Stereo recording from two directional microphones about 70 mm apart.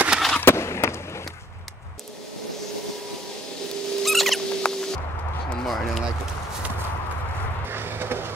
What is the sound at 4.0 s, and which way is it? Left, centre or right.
Music, centre.